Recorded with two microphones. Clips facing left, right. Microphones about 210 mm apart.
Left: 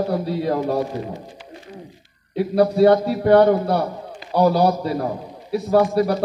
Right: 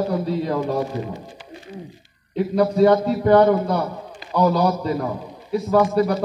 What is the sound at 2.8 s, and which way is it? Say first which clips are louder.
A man's voice: even; 35° left (ahead or behind).